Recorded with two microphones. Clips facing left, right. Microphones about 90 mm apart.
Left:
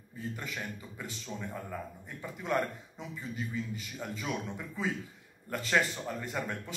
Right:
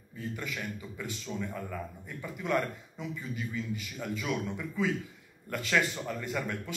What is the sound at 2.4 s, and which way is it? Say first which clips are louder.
A man's voice: right 1 dB; 30° left (ahead or behind).